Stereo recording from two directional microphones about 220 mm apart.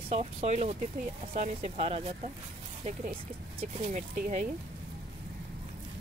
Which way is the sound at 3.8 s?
35° right (ahead or behind).